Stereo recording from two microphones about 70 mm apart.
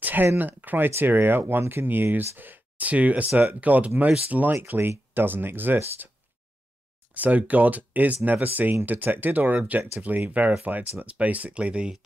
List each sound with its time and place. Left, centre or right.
0.0 s a sound: right
0.4 s speech: right
7.2 s speech: right